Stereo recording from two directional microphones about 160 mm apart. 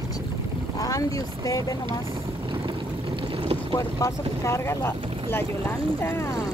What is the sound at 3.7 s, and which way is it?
Speech, 20° left (ahead or behind).